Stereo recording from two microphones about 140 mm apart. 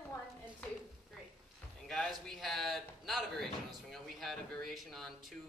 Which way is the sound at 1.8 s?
Centre (ahead or behind).